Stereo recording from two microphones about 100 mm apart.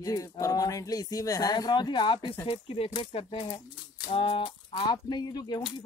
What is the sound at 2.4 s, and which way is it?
Speech, 80° left.